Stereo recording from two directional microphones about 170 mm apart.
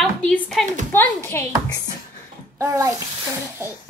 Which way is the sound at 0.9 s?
15° left (ahead or behind).